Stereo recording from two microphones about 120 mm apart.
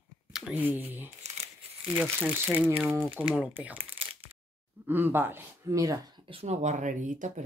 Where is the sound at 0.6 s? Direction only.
15° right (ahead or behind).